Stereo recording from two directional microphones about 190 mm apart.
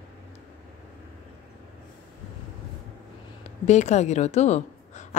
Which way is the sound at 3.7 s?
35° left (ahead or behind).